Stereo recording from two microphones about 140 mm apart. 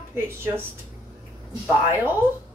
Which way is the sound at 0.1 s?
15° right (ahead or behind).